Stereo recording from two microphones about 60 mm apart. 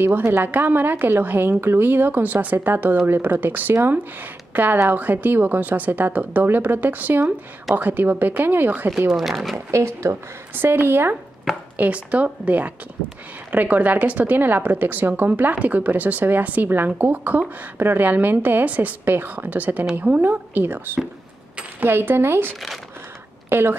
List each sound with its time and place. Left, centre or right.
0.2 s a woman's voice: right
9.1 s speech: centre
9.7 s speech: right
10.5 s a woman's voice: right
11.8 s a woman's voice: right
23.5 s a woman's voice: right